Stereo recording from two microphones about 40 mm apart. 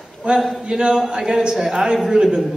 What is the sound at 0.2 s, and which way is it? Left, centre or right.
Speech, right.